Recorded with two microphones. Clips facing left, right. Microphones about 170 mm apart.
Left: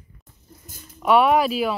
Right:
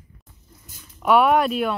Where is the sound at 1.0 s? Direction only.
Centre (ahead or behind).